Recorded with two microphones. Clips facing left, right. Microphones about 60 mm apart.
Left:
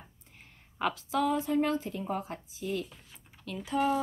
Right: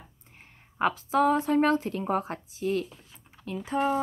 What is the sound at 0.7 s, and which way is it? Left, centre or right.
Speech, right.